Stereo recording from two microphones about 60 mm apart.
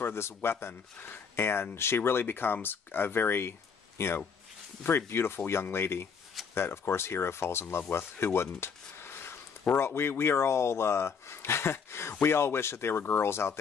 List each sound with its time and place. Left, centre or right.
0.0 s speech: left